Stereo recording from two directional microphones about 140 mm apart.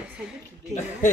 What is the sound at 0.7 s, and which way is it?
Speech, 60° left (ahead or behind).